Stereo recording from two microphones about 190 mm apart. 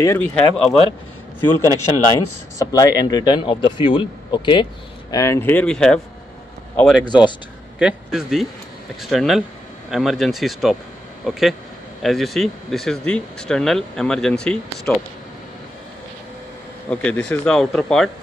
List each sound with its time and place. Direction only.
0.0 s speech: 15° left (ahead or behind)
0.3 s speech: 5° left (ahead or behind)
2.6 s a man's voice: 15° left (ahead or behind); by 7.1 s centre (ahead or behind)
7.1 s a man's voice: 25° left (ahead or behind)
7.8 s speech: 5° right (ahead or behind)
16.9 s speech: 5° left (ahead or behind)